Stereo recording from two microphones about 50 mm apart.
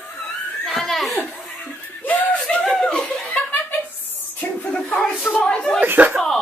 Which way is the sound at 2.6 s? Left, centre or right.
Centre.